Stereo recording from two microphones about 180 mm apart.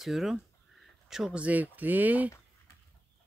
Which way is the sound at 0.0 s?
Centre (ahead or behind).